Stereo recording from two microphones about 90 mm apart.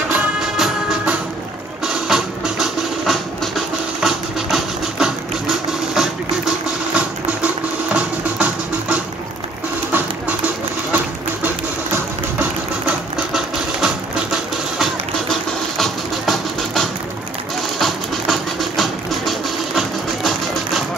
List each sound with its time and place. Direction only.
0.1 s music: 15° right (ahead or behind)
0.6 s music: 5° right (ahead or behind)
11.4 s engine: 20° right (ahead or behind)
13.3 s music: 5° right (ahead or behind)